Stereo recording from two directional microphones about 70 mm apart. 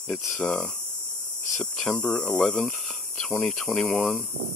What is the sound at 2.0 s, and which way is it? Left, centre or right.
Speech, centre.